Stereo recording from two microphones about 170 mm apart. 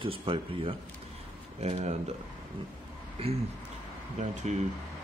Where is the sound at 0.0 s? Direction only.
30° right (ahead or behind).